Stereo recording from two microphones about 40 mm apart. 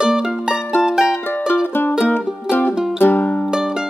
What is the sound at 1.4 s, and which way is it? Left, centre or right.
Music, left.